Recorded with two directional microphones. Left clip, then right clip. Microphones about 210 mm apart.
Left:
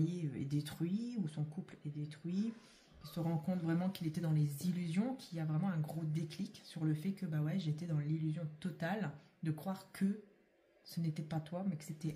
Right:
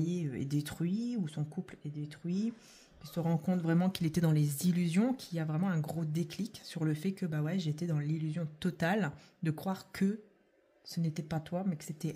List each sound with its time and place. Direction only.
0.0 s speech: 40° right (ahead or behind)